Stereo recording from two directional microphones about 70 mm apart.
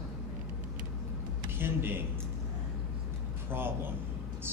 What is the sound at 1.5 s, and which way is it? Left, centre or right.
Speech, right.